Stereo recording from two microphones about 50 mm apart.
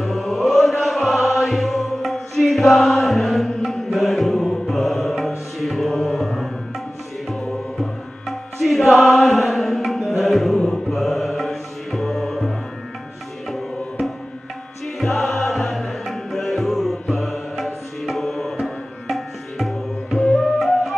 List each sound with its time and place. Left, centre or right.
0.0 s music: centre
10.7 s mantra: centre
15.0 s music: centre
19.0 s tabla: centre
20.2 s flute: centre
20.5 s flute: centre